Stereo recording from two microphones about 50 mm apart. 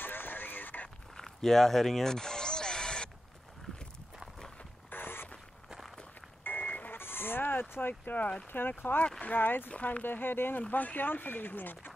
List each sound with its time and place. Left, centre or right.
0.0 s radio: left
1.1 s music: centre
3.7 s a sound: centre
4.9 s a sound: left
6.4 s reversing beeps: left
7.0 s sheep: left
8.5 s speech: left
9.7 s speech: left
10.0 s speech: left